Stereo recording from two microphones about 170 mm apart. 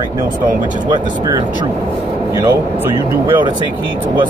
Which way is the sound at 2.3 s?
15° right (ahead or behind).